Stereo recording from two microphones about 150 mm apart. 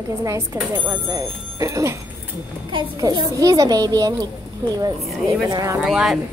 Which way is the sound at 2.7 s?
30° right (ahead or behind).